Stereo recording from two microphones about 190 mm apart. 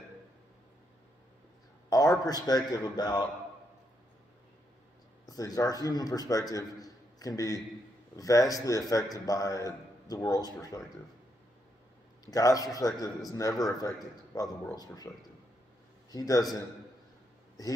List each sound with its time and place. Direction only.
1.9 s a man's voice: 20° left (ahead or behind)
5.2 s a man's voice: 20° left (ahead or behind)
12.3 s a man's voice: 20° left (ahead or behind)